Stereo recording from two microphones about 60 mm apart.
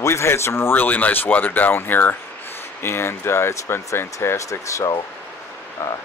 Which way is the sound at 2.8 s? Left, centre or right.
Left.